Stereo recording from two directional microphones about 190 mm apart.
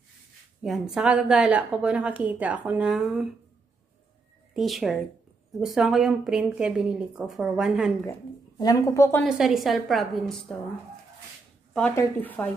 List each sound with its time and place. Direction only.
0.6 s a woman's voice: centre (ahead or behind)
4.6 s a woman's voice: centre (ahead or behind)
8.1 s speech: 20° left (ahead or behind)
9.2 s a woman's voice: centre (ahead or behind)
11.9 s speech: 10° left (ahead or behind)